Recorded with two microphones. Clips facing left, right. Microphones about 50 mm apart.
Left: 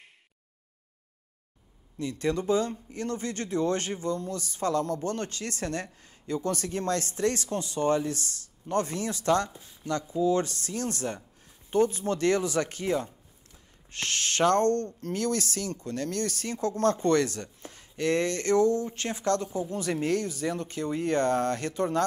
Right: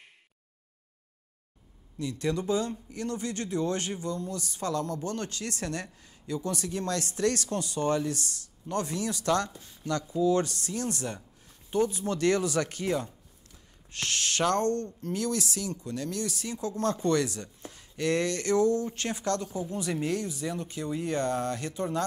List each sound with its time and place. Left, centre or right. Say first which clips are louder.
2.0 s speech: left 2 dB; left